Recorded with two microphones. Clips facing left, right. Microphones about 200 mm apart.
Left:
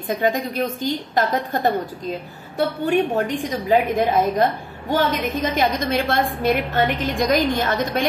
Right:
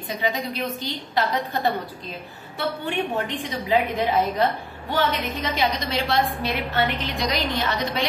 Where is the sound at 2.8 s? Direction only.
45° left (ahead or behind).